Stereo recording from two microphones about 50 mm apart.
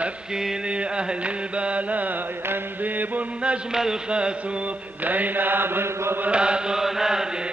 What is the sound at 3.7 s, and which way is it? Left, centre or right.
Chant, centre.